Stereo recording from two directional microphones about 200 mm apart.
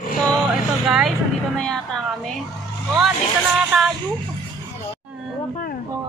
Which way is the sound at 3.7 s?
Centre (ahead or behind).